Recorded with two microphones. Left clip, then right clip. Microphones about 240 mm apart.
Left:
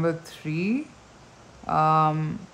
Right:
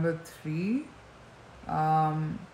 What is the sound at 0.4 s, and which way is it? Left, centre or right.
Speech, centre.